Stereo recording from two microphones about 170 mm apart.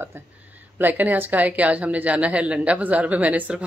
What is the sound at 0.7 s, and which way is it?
Speech, 10° right (ahead or behind).